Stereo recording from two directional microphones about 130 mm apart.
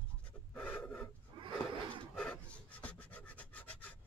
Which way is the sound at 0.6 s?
10° left (ahead or behind).